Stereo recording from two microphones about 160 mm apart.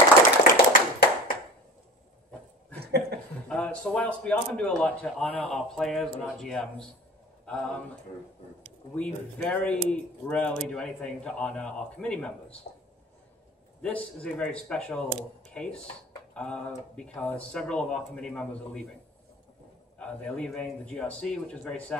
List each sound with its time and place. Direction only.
0.4 s tap: 60° left (ahead or behind)
2.8 s chuckle: 90° right
3.4 s speech: 5° left (ahead or behind)
8.9 s speech: 5° left (ahead or behind)
13.8 s speech: 10° left (ahead or behind)
20.0 s speech: 5° left (ahead or behind)